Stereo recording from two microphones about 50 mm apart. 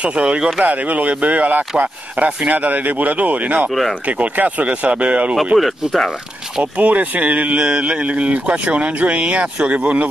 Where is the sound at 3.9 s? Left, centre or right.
Right.